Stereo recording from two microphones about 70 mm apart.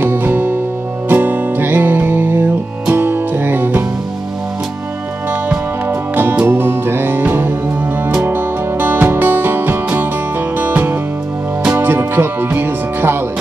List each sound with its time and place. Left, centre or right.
0.0 s music: right
5.9 s music: right